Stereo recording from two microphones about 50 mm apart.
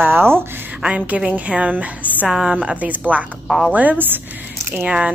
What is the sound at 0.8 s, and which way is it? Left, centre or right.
A woman's voice, centre.